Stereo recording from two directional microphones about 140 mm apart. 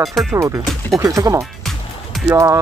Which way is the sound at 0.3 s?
20° right (ahead or behind).